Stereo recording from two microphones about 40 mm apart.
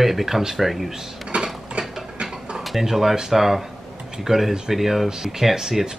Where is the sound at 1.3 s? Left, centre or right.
Right.